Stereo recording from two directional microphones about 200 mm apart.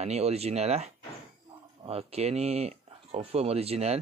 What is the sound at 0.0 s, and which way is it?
Speech, 30° right (ahead or behind).